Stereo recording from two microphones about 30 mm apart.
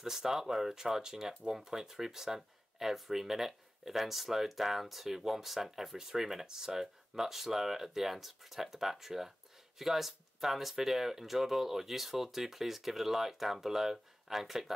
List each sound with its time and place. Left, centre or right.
0.0 s speech: centre